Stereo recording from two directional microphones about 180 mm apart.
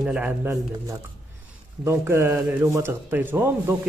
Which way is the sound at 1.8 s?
15° right (ahead or behind).